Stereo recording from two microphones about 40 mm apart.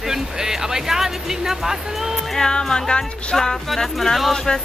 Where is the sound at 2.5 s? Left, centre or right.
Left.